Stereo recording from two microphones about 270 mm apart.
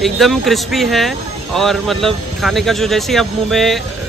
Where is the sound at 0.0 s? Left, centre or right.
Centre.